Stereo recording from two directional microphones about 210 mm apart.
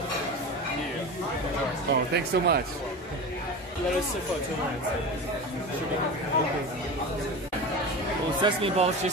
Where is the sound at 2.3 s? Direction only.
55° right (ahead or behind).